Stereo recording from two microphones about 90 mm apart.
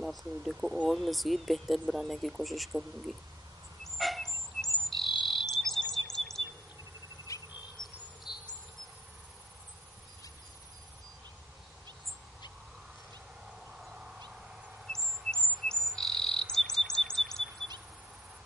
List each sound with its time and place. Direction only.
0.0 s speech: centre (ahead or behind)
3.8 s dog: centre (ahead or behind)
4.8 s chirp: centre (ahead or behind)
7.3 s insect: 35° left (ahead or behind)
15.6 s chirp: 5° left (ahead or behind)